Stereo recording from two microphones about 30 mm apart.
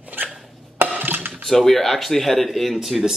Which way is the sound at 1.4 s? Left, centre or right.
Centre.